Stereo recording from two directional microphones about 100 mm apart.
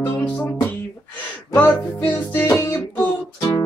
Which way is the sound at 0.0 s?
25° left (ahead or behind).